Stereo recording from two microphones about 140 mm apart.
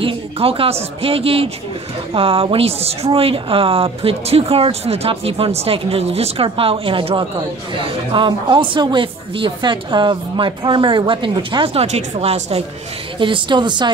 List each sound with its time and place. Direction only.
0.0 s speech: 40° right (ahead or behind)
13.2 s speech: 35° right (ahead or behind)